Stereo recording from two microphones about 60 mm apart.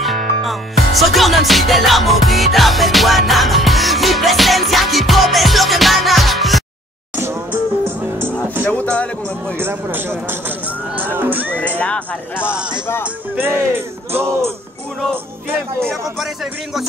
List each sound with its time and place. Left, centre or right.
0.0 s music: centre
7.2 s music: right
8.6 s speech: left
9.6 s speech: right
11.8 s speech: left
12.4 s speech: centre
14.1 s speech: right